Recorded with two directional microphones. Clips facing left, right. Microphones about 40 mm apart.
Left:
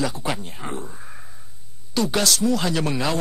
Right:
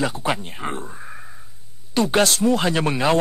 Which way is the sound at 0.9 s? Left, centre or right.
Centre.